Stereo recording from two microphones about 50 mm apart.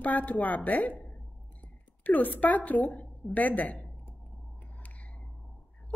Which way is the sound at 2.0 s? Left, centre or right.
Left.